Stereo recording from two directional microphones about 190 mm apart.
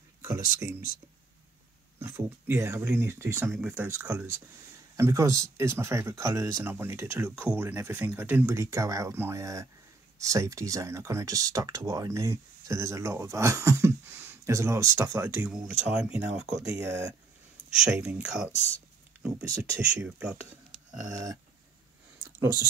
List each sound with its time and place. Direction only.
0.2 s speech: 15° right (ahead or behind)
2.0 s speech: 10° right (ahead or behind)
15.9 s speech: 5° right (ahead or behind)
16.5 s speech: 15° right (ahead or behind)
19.4 s speech: 15° right (ahead or behind)
19.9 s speech: 5° right (ahead or behind)